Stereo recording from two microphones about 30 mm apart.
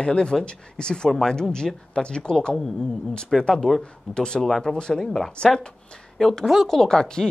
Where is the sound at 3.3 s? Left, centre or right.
Centre.